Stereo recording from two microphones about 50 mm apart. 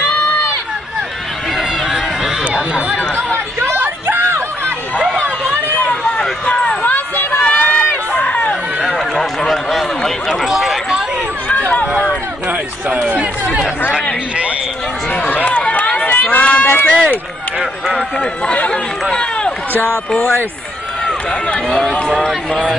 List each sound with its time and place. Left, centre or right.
1.6 s run: centre
2.5 s a sound: centre
3.5 s a sound: right
6.4 s a sound: left
7.5 s run: left
8.8 s run: centre
11.9 s run: right
15.1 s run: left
17.9 s speech: left
19.1 s run: centre
21.6 s speech: centre
21.9 s speech: left
22.5 s speech: centre